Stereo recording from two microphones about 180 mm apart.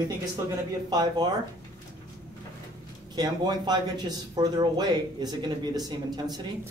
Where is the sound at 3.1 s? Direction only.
25° right (ahead or behind).